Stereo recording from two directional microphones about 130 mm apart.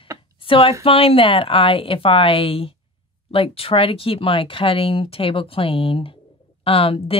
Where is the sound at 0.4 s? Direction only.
45° left (ahead or behind).